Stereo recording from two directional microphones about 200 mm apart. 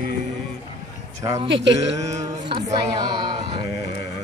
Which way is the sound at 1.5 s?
65° right (ahead or behind).